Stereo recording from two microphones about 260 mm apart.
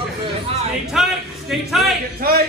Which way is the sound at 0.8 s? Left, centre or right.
Centre.